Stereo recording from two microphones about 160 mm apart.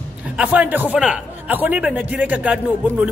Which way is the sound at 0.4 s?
10° right (ahead or behind).